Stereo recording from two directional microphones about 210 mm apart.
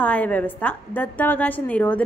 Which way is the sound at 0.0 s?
5° left (ahead or behind).